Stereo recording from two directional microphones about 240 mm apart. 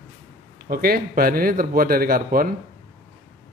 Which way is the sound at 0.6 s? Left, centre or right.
Right.